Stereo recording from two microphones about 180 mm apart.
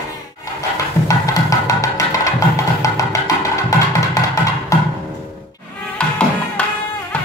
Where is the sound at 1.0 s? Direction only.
20° left (ahead or behind).